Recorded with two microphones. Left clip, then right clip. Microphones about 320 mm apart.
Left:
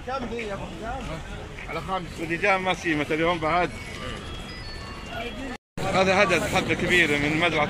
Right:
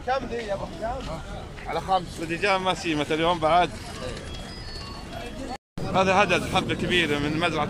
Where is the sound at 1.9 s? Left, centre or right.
Right.